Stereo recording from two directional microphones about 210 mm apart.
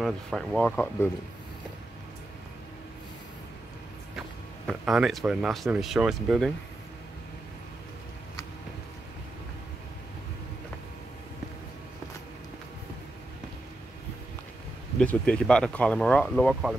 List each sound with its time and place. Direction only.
0.0 s speech: centre (ahead or behind)
4.6 s speech: centre (ahead or behind)
15.0 s speech: 5° left (ahead or behind)